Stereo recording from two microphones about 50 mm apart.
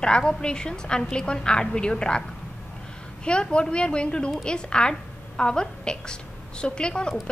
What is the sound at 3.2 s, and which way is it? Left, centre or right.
A woman's voice, centre.